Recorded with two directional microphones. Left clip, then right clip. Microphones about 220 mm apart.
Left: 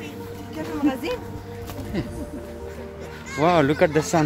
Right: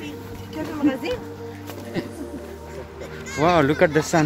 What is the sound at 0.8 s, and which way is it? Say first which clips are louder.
Speech: right 2 dB; 45° left (ahead or behind).